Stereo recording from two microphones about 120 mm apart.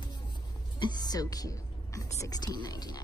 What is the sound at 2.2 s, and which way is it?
Speech, 35° left (ahead or behind).